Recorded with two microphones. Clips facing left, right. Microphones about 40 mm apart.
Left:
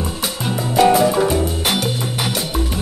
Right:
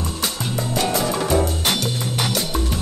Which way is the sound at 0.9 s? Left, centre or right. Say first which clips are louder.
Left 5 dB; centre.